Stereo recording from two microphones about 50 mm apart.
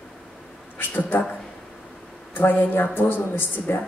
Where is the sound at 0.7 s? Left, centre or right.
Left.